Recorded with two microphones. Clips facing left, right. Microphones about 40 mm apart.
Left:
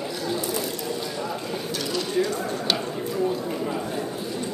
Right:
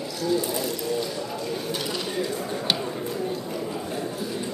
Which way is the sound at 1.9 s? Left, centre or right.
Centre.